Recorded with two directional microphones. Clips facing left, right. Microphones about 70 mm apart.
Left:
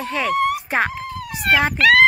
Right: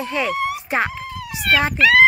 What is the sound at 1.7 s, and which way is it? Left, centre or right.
Speech, left.